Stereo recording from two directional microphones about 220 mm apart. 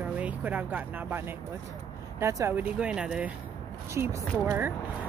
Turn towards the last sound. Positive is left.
turn(degrees=-10)  # may be behind; listen again after turning